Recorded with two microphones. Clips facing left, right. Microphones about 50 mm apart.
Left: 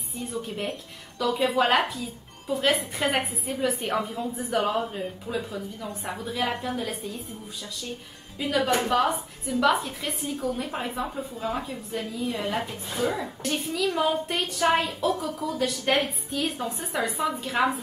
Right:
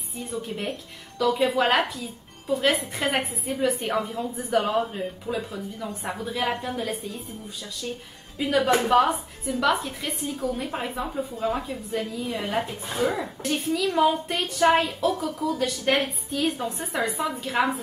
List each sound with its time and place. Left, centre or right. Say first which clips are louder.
0.3 s a woman's voice: right 1 dB; centre
8.4 s a woman's voice: right 3 dB; centre
12.9 s speech: right 2 dB; centre
13.2 s a woman's voice: right 2 dB; centre